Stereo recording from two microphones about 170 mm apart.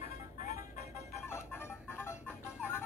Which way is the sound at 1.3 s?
15° left (ahead or behind).